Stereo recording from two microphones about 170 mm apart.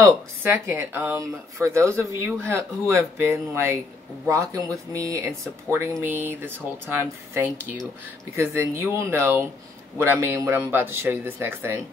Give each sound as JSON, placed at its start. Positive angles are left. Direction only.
{"t": 0.0, "sound": "speech", "side_deg": -15}